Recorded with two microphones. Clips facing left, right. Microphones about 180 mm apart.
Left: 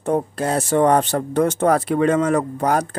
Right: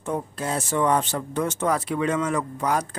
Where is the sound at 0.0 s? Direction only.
60° left (ahead or behind).